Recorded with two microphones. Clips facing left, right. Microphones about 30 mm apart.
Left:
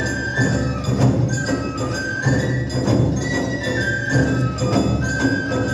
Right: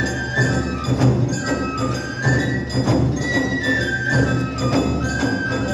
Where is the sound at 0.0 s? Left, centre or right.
Centre.